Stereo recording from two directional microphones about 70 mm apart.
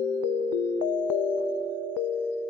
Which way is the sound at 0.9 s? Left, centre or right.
Left.